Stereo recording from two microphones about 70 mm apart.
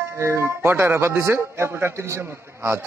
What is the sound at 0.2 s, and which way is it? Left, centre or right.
Speech, right.